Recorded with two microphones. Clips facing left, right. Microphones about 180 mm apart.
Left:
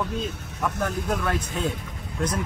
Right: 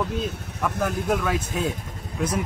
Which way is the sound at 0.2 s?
Centre (ahead or behind).